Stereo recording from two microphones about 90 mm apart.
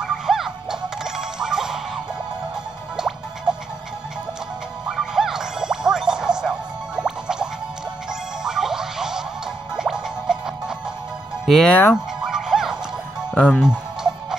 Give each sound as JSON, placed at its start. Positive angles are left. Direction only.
{"t": 0.0, "sound": "music", "side_deg": -5}
{"t": 3.0, "sound": "music", "side_deg": -5}
{"t": 4.9, "sound": "music", "side_deg": -5}
{"t": 11.4, "sound": "speech", "side_deg": 0}
{"t": 11.7, "sound": "fowl", "side_deg": 25}
{"t": 12.3, "sound": "music", "side_deg": -5}
{"t": 13.3, "sound": "speech", "side_deg": 10}
{"t": 13.6, "sound": "music", "side_deg": -10}